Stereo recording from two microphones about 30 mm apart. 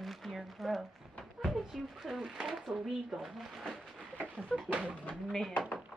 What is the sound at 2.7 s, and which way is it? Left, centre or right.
Speech, right.